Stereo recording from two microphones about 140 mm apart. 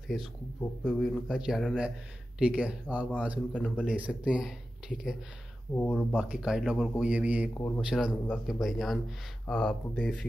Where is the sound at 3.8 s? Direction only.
10° right (ahead or behind).